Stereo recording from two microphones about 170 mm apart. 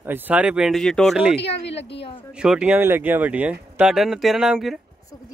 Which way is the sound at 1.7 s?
90° left.